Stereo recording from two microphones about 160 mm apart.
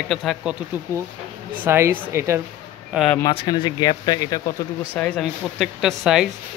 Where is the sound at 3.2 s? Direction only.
25° left (ahead or behind).